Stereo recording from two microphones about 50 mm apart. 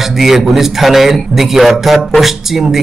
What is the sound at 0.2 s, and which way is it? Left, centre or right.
A man's voice, centre.